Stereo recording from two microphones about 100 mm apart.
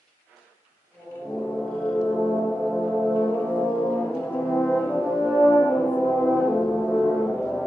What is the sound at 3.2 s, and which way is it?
Brass instrument, 15° left (ahead or behind).